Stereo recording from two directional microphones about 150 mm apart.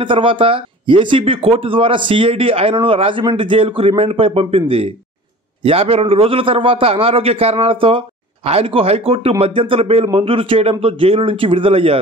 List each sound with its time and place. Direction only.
0.0 s speech: 35° right (ahead or behind)